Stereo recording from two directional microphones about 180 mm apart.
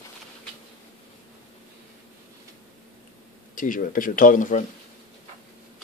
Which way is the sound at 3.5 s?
50° left (ahead or behind).